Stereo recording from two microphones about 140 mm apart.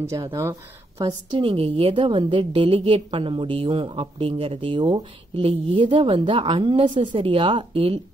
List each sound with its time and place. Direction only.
0.0 s speech: 20° right (ahead or behind)
1.0 s a woman's voice: 40° right (ahead or behind)